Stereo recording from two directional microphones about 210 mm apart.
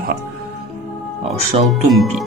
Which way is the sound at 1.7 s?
Centre (ahead or behind).